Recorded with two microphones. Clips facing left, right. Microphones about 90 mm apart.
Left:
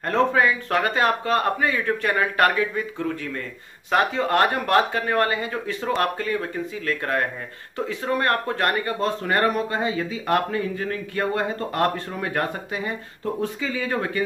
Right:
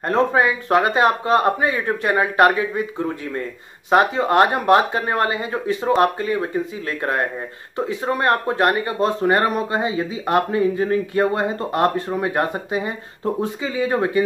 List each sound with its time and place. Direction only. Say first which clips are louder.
0.1 s speech: right 2 dB; 20° right (ahead or behind)